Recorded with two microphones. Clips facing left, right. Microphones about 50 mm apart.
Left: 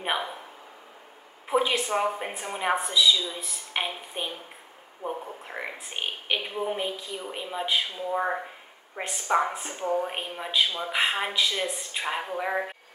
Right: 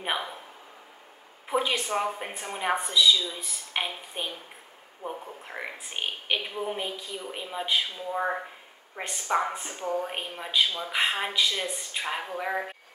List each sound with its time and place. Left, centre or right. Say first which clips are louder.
0.0 s speech: left 2 dB; centre
1.5 s a woman's voice: left 2 dB; centre
9.8 s speech: left 3 dB; left
10.0 s a woman's voice: left 2 dB; centre